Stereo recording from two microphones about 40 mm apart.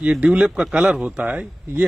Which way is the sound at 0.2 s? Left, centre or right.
Right.